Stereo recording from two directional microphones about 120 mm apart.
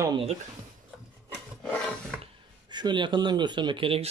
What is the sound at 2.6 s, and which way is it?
Speech, 40° right (ahead or behind).